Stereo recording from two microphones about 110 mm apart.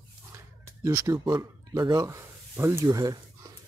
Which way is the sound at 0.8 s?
30° right (ahead or behind).